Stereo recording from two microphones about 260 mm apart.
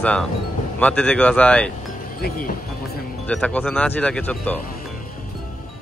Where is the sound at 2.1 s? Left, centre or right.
Left.